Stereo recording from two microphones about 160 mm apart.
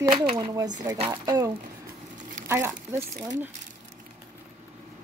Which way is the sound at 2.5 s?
15° right (ahead or behind).